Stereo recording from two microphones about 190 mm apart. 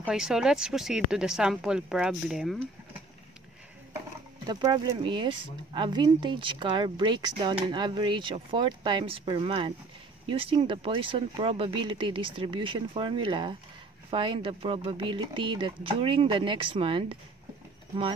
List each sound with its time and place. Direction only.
0.0 s speech: 5° right (ahead or behind)
4.5 s speech: 20° right (ahead or behind)